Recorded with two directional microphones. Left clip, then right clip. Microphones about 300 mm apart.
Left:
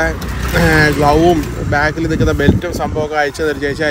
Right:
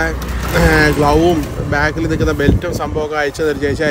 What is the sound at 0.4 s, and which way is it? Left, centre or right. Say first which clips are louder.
Speech: even; centre.